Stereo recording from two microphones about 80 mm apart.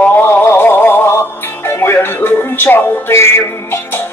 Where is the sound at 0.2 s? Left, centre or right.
Left.